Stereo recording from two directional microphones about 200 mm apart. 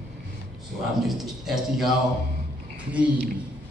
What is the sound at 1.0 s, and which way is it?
Speech, centre (ahead or behind).